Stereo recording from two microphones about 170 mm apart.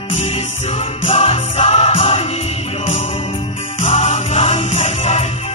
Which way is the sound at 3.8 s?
35° left (ahead or behind).